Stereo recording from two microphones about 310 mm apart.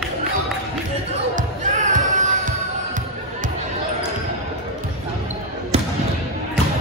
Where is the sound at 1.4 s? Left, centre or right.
Right.